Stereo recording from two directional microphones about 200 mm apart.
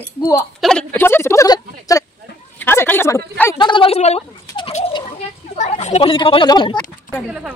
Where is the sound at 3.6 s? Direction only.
25° left (ahead or behind).